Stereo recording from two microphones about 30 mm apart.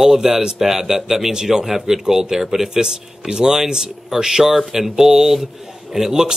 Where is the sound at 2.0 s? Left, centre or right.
Centre.